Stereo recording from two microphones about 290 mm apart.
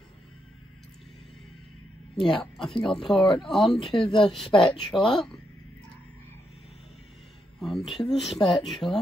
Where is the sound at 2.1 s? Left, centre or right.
Centre.